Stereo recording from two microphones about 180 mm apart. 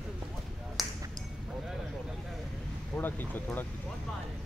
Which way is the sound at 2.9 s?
10° left (ahead or behind).